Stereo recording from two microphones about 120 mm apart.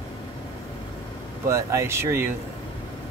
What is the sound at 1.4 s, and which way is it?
Speech, 25° right (ahead or behind).